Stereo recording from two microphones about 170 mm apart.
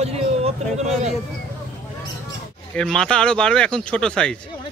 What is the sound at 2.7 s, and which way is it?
Speech, 5° left (ahead or behind).